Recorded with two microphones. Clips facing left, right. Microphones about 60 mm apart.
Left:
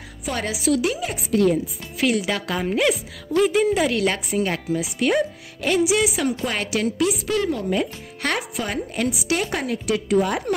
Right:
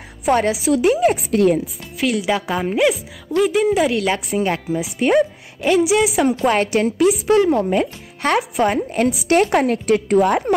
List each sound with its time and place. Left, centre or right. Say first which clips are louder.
0.4 s a woman's voice: right 5 dB; right
2.1 s speech: right 4 dB; centre
3.3 s a woman's voice: right 2 dB; centre
6.4 s speech: right 7 dB; right
8.5 s a woman's voice: right 8 dB; right
9.3 s speech: right 8 dB; right